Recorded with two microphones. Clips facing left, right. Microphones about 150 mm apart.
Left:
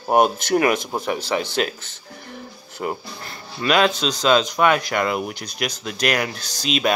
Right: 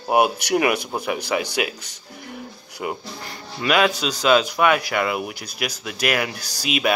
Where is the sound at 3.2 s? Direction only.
15° right (ahead or behind).